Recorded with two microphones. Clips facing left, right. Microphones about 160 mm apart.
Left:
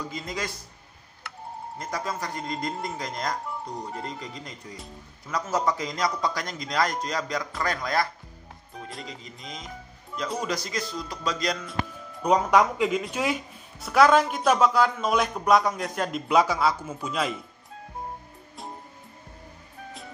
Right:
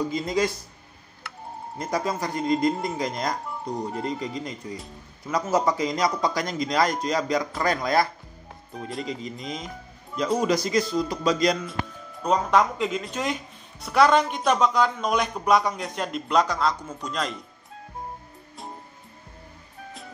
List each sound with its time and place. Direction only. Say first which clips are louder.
0.1 s speech: right 9 dB; 25° right (ahead or behind)
1.8 s speech: right 6 dB; 15° right (ahead or behind)
12.2 s speech: left 1 dB; 10° left (ahead or behind)